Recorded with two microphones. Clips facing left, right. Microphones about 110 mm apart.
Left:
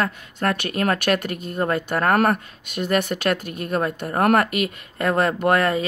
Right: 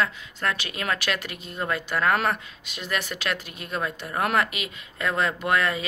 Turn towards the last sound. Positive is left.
turn(degrees=50)  # may be behind; listen again after turning